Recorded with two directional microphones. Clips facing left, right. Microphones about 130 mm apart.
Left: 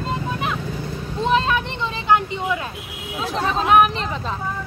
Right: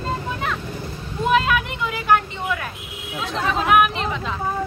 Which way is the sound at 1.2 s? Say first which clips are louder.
Right 1 dB; 30° left (ahead or behind).